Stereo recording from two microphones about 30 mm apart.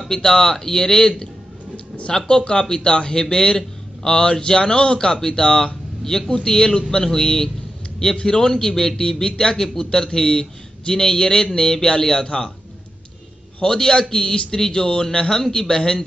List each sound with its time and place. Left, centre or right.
0.1 s speech: centre; by 3.2 s left
3.2 s a man's voice: centre
13.6 s speech: left
15.0 s a man's voice: centre